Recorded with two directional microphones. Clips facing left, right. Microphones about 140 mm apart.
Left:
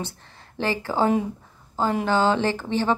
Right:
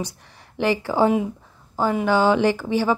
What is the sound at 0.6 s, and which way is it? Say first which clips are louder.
A woman's voice: right 4 dB; 15° right (ahead or behind).